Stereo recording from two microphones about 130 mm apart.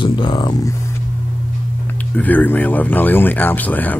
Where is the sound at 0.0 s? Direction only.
40° left (ahead or behind).